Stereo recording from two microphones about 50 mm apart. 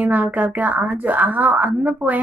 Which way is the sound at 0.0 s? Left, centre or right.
Right.